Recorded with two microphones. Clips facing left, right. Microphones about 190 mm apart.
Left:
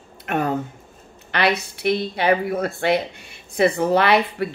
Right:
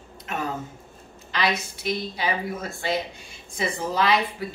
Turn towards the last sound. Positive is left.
turn(degrees=65)  # may be behind; listen again after turning